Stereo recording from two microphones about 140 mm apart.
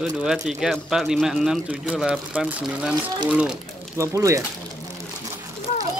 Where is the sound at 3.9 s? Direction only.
20° right (ahead or behind).